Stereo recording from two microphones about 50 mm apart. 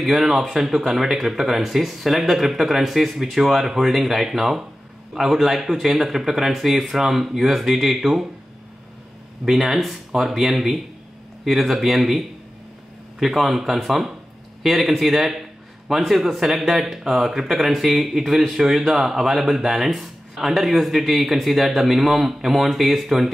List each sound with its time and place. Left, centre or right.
0.0 s speech: centre
9.4 s speech: centre